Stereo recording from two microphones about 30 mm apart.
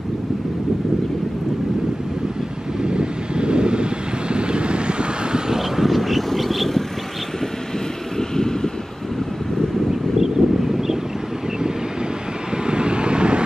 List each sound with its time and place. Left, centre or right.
2.8 s vehicle: right
5.6 s vehicle: centre
8.2 s vehicle: centre
10.1 s vehicle: centre
12.6 s vehicle: right